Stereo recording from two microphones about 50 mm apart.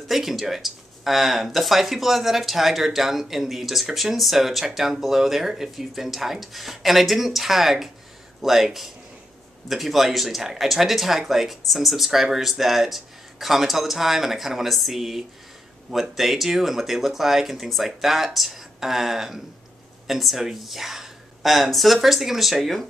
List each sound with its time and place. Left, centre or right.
0.1 s speech: centre